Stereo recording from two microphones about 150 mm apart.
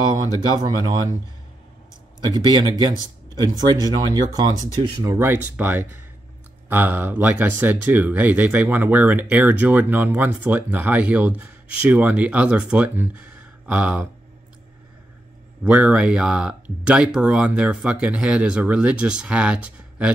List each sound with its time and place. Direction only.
0.6 s speech: 30° right (ahead or behind)
2.1 s speech: 25° right (ahead or behind); by 14.0 s 10° right (ahead or behind)
15.6 s speech: 10° right (ahead or behind)